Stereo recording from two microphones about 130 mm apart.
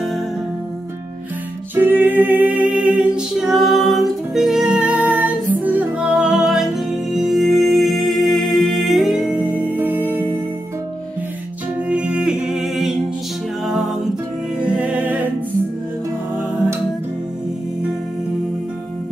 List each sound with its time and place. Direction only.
1.8 s music: 15° right (ahead or behind)
9.6 s music: 15° right (ahead or behind)
11.9 s music: 10° right (ahead or behind)
14.6 s music: 10° right (ahead or behind)